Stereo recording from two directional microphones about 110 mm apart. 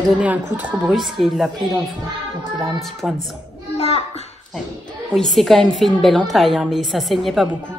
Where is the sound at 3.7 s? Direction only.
65° left (ahead or behind).